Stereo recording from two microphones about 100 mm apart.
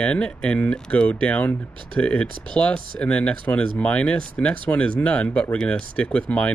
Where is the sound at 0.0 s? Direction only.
10° left (ahead or behind).